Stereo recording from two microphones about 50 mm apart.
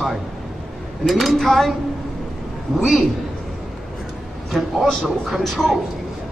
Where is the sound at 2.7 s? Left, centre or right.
Centre.